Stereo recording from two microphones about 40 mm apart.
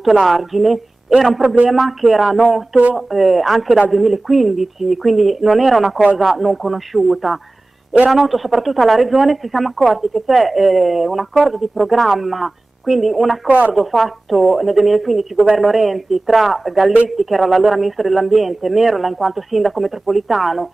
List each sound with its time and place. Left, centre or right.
0.2 s speech: centre
13.5 s speech: right
13.7 s speech: centre